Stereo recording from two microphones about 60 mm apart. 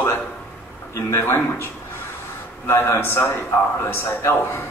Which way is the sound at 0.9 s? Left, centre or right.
Left.